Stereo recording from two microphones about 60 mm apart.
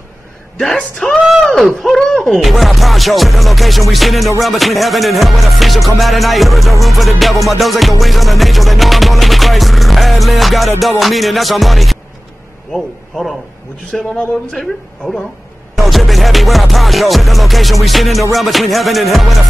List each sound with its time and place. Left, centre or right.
0.6 s speech: centre
1.4 s a sound: centre
1.8 s music: centre
12.7 s a man's voice: centre
15.7 s music: centre